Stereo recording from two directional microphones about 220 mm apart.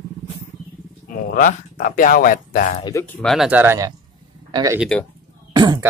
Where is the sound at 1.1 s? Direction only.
40° left (ahead or behind).